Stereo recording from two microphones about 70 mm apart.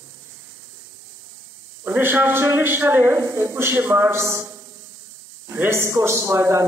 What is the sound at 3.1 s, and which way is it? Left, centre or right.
Speech, right.